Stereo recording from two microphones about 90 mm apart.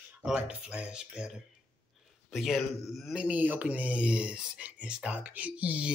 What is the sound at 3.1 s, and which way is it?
Speech, 15° right (ahead or behind).